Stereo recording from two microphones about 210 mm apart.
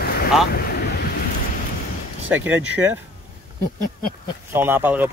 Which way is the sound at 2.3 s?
10° right (ahead or behind).